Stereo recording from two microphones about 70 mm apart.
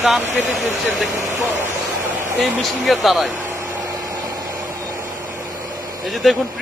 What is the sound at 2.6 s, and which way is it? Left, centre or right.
Speech, centre.